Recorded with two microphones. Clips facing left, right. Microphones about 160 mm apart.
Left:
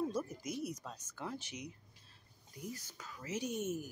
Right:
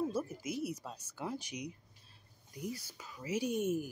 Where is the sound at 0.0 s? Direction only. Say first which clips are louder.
Right 2 dB; 5° right (ahead or behind).